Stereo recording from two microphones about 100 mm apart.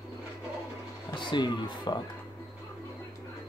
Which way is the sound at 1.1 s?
50° left (ahead or behind).